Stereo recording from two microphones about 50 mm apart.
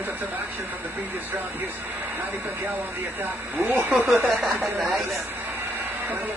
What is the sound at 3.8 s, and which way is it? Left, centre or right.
Speech, right.